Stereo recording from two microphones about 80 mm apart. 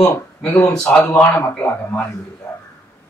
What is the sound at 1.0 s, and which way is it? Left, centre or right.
Speech, left.